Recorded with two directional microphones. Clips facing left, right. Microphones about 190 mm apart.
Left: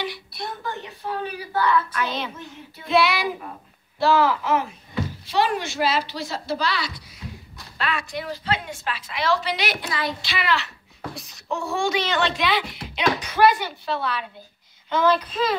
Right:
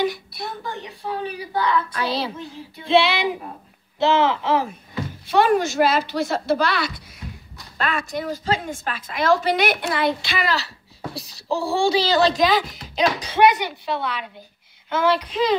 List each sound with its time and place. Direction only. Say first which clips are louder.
0.7 s a woman's voice: even; 15° right (ahead or behind)
1.9 s child singing: right 3 dB; 35° right (ahead or behind)
5.2 s a woman's voice: right 6 dB; 50° right (ahead or behind); by 13.4 s 35° right (ahead or behind)
13.4 s a woman's voice: right 2 dB; 20° right (ahead or behind)